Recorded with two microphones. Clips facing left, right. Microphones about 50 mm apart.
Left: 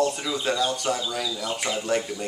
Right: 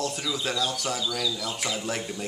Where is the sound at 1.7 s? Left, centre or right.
Centre.